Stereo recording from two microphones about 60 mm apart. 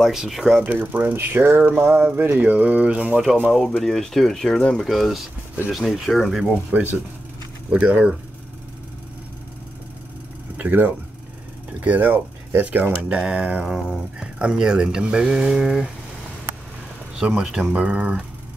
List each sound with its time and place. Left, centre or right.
0.1 s speech: centre
0.6 s a sound: right
2.5 s speech: right
3.5 s speech: centre
4.8 s speech: centre
7.7 s speech: right
10.6 s a sound: right
11.8 s speech: right
17.1 s speech: centre